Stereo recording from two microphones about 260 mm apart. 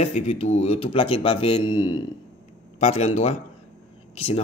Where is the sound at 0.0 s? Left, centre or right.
Left.